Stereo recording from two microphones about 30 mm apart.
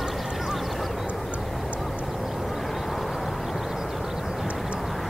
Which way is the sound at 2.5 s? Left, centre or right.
Centre.